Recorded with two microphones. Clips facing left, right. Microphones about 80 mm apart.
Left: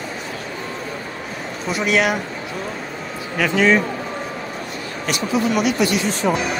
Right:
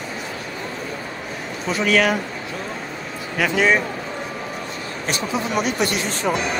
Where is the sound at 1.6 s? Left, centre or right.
Centre.